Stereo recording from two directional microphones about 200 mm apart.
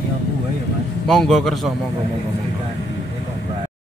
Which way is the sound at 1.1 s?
Centre (ahead or behind).